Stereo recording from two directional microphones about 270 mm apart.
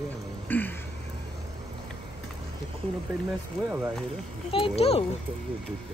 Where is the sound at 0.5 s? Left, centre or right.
Centre.